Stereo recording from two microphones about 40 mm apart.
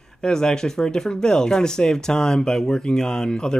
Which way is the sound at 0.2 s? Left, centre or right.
Centre.